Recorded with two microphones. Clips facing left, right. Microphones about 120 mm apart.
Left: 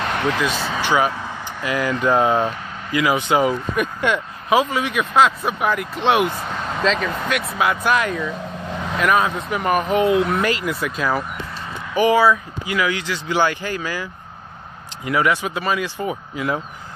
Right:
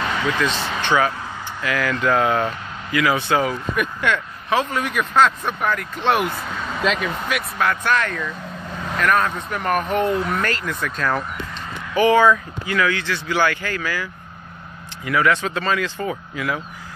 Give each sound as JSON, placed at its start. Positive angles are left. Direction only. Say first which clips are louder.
{"t": 0.1, "sound": "vehicle", "louder": "left 2 dB", "side_deg": 60}
{"t": 0.4, "sound": "speech", "louder": "left 1 dB", "side_deg": 5}
{"t": 0.9, "sound": "speech", "louder": "right 1 dB", "side_deg": 15}
{"t": 7.5, "sound": "speech", "louder": "left 1 dB", "side_deg": 10}
{"t": 15.0, "sound": "speech", "louder": "even", "side_deg": 20}